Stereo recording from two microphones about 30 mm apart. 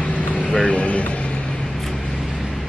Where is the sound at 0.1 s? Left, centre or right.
Left.